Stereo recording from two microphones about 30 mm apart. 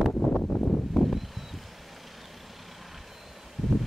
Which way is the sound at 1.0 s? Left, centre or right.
Centre.